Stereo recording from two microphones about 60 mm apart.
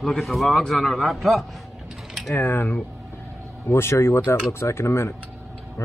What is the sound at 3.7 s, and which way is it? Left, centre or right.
Speech, left.